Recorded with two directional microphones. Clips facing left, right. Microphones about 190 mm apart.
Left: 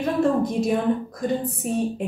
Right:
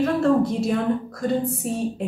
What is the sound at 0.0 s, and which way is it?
A woman's voice, 15° left (ahead or behind).